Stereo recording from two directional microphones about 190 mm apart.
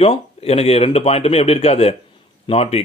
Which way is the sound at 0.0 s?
30° left (ahead or behind).